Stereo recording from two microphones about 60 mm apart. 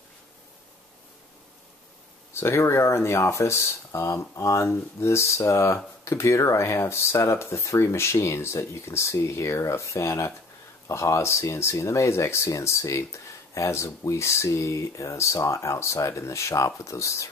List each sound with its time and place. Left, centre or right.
2.3 s speech: left